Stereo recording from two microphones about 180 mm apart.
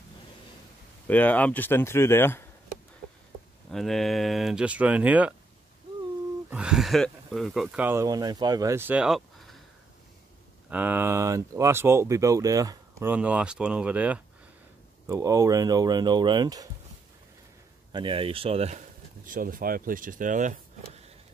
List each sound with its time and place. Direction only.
1.0 s speech: 10° left (ahead or behind)
3.7 s speech: centre (ahead or behind)
6.5 s speech: 5° right (ahead or behind)
10.7 s speech: 10° right (ahead or behind)
13.1 s speech: 5° right (ahead or behind)
17.9 s speech: 30° right (ahead or behind)
19.2 s speech: 50° right (ahead or behind)